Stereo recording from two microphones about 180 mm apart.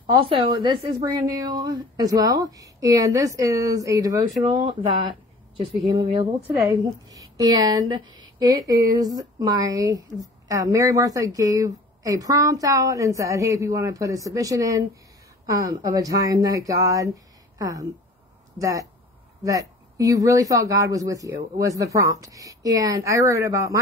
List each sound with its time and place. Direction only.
0.0 s speech: 30° right (ahead or behind)
4.6 s speech: 30° right (ahead or behind)
6.4 s a woman's voice: 10° right (ahead or behind)
6.7 s a woman's voice: 20° right (ahead or behind)